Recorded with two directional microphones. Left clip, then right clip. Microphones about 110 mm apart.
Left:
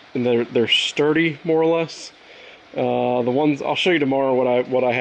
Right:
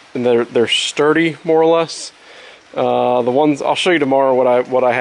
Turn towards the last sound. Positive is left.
turn(degrees=-35)  # may be behind; listen again after turning